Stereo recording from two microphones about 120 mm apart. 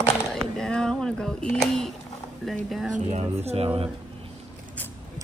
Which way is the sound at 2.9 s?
65° right (ahead or behind).